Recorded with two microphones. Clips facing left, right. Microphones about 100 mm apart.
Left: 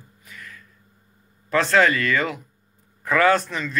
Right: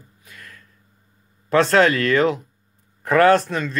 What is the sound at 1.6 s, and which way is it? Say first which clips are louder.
Speech: right 1 dB; 60° right (ahead or behind).